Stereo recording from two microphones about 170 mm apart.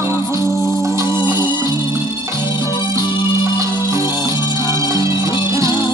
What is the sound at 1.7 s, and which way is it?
Music, 15° right (ahead or behind).